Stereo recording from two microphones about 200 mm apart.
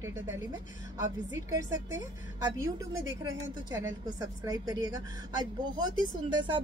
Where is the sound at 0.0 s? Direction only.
15° right (ahead or behind).